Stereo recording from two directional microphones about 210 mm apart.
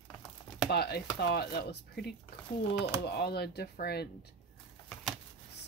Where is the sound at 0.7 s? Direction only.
50° left (ahead or behind).